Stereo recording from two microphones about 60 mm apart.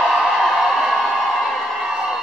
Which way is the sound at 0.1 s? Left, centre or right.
Centre.